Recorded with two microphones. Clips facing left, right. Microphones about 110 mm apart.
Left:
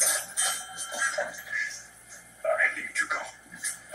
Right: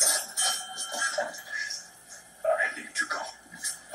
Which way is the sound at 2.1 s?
20° right (ahead or behind).